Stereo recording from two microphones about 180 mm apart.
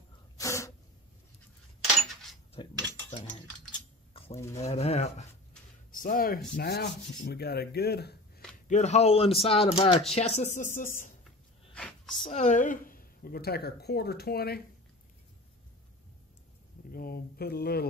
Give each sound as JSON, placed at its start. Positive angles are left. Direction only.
{"t": 0.4, "sound": "sneeze", "side_deg": 15}
{"t": 2.5, "sound": "mechanisms", "side_deg": 30}
{"t": 4.1, "sound": "a sound", "side_deg": 30}
{"t": 4.6, "sound": "speech", "side_deg": 35}
{"t": 5.9, "sound": "speech", "side_deg": 50}
{"t": 8.6, "sound": "speech", "side_deg": 40}
{"t": 11.7, "sound": "a sound", "side_deg": 5}
{"t": 12.2, "sound": "speech", "side_deg": 35}
{"t": 16.9, "sound": "speech", "side_deg": 60}